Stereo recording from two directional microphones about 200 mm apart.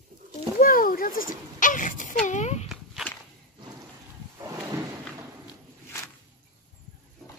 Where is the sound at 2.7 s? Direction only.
Centre (ahead or behind).